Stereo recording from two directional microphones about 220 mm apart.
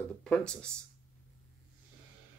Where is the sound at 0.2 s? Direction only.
5° left (ahead or behind).